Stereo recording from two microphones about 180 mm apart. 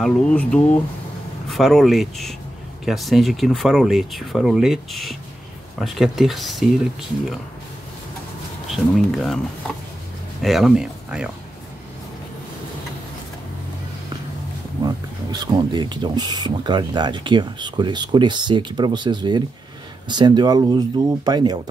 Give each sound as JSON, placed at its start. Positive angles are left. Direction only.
{"t": 0.0, "sound": "speech", "side_deg": 5}
{"t": 8.6, "sound": "speech", "side_deg": 0}
{"t": 10.4, "sound": "speech", "side_deg": 0}
{"t": 15.4, "sound": "speech", "side_deg": -25}